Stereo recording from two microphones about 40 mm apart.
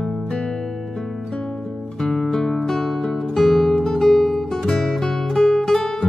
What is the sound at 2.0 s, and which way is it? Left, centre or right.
Music, centre.